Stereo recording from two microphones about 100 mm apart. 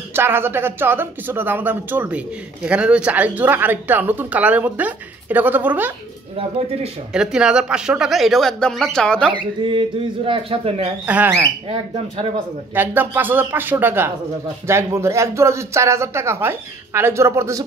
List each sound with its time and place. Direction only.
0.1 s speech: 20° right (ahead or behind)
7.2 s speech: 10° right (ahead or behind); by 9.3 s 10° left (ahead or behind)
9.3 s speech: 55° right (ahead or behind)
11.1 s speech: 15° right (ahead or behind)
12.7 s speech: 20° right (ahead or behind)